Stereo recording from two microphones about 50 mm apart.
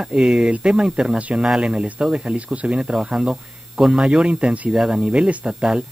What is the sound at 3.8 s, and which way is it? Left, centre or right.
Mantra, centre.